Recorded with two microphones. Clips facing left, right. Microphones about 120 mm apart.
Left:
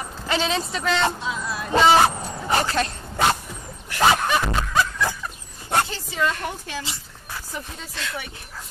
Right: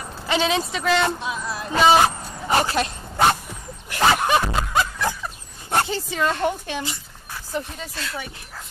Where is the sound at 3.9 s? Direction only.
25° right (ahead or behind).